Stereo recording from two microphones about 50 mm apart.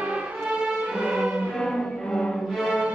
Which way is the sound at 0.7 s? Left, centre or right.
Right.